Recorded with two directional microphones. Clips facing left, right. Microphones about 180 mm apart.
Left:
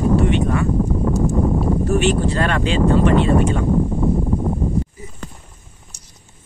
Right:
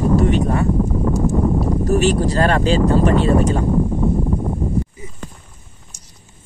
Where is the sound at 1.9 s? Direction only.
40° right (ahead or behind).